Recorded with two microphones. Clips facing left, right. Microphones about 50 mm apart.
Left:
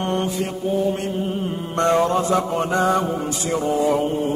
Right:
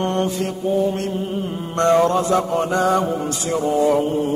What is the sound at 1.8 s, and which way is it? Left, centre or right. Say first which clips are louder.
Speech: right 2 dB; centre.